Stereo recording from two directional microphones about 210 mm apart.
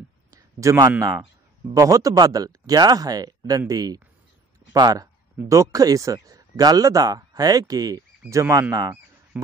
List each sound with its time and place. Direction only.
0.3 s a man's voice: 15° right (ahead or behind)